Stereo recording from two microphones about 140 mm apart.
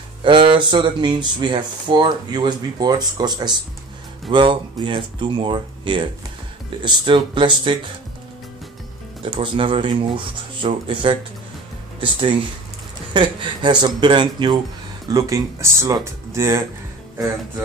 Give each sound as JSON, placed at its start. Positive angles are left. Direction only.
{"t": 0.2, "sound": "speech", "side_deg": -35}
{"t": 9.2, "sound": "speech", "side_deg": -40}